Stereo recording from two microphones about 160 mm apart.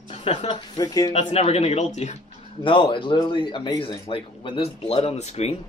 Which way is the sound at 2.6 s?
30° left (ahead or behind).